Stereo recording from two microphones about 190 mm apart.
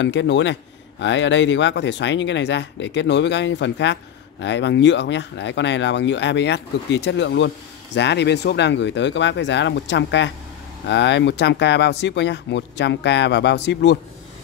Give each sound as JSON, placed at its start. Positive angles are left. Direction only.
{"t": 0.0, "sound": "speech", "side_deg": 70}